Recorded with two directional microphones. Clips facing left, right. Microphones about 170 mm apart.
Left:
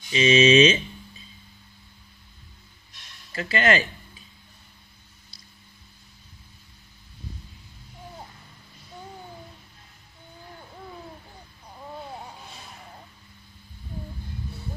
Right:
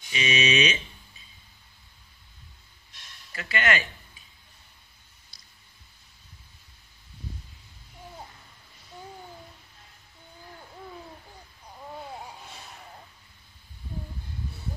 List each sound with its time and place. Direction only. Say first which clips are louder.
0.1 s speech: left 9 dB; 30° left (ahead or behind)
3.3 s speech: left 5 dB; 30° left (ahead or behind)